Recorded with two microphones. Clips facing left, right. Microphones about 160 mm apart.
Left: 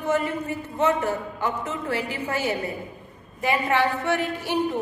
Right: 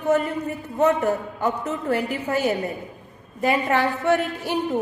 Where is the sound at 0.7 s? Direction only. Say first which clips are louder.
Right 3 dB; 45° right (ahead or behind).